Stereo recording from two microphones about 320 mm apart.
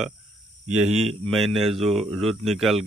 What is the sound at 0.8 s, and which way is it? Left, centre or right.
Speech, centre.